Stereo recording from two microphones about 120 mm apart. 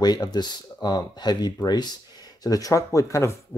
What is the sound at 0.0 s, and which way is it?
A man's voice, 35° left (ahead or behind).